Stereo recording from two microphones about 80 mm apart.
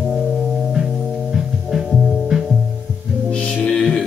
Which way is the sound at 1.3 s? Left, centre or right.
Centre.